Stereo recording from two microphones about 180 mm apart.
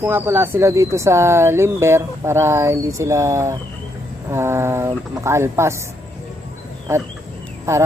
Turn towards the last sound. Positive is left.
turn(degrees=-15)  # may be behind; listen again after turning